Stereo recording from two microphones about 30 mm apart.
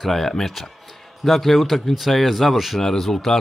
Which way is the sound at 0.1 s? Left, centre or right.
Centre.